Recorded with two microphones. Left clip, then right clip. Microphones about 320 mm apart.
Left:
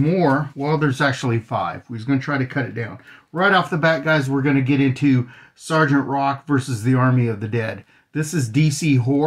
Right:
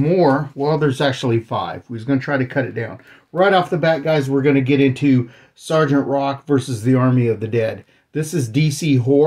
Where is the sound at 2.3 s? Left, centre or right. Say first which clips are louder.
Right 4 dB; centre.